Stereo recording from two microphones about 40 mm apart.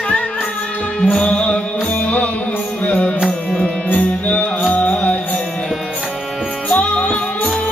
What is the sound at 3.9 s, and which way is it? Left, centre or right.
Music, left.